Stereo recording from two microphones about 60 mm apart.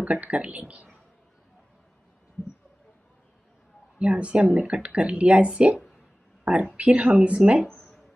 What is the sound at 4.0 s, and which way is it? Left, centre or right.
A woman's voice, centre.